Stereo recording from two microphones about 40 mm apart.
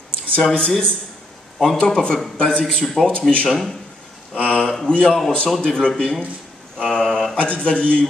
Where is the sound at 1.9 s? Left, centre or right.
Left.